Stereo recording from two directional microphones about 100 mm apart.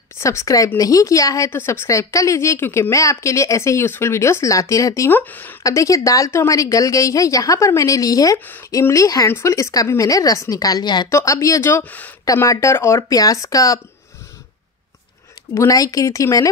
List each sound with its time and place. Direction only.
0.2 s a woman's voice: 30° left (ahead or behind)
1.5 s speech: 25° left (ahead or behind)
5.2 s speech: 20° left (ahead or behind)
5.6 s a woman's voice: 35° left (ahead or behind)
11.1 s a woman's voice: 30° left (ahead or behind)
15.5 s a woman's voice: 35° left (ahead or behind)